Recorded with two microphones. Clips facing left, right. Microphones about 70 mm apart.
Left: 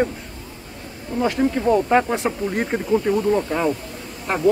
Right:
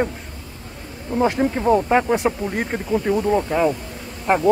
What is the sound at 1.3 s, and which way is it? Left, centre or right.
Speech, centre.